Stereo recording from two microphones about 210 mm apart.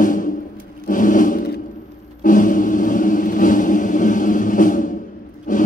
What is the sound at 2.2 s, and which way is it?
Music, 40° left (ahead or behind).